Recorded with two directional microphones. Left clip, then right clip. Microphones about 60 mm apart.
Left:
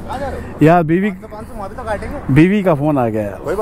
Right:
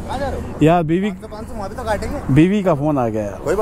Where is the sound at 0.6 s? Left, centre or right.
Centre.